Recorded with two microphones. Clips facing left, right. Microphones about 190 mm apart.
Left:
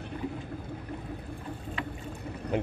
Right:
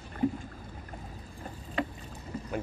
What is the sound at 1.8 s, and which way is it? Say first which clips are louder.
Boat: right 7 dB; 40° right (ahead or behind).